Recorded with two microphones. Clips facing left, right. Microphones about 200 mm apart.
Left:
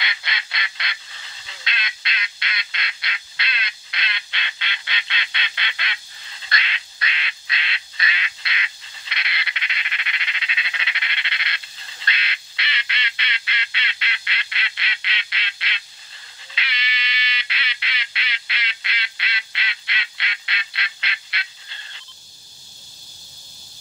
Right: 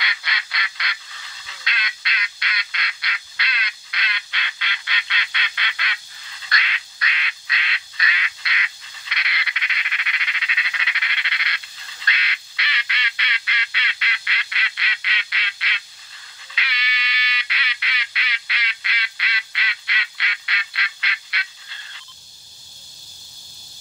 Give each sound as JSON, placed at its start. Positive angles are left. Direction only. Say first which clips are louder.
{"t": 0.0, "sound": "honk", "louder": "even", "side_deg": 25}
{"t": 16.5, "sound": "duck", "louder": "even", "side_deg": 25}